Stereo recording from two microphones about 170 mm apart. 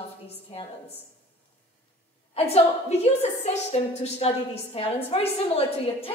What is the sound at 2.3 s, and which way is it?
A woman's voice, 35° left (ahead or behind).